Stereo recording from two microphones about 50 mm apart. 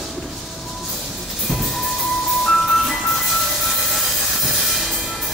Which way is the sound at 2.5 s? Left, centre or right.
Centre.